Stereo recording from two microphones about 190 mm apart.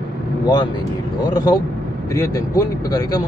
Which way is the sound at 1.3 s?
20° left (ahead or behind).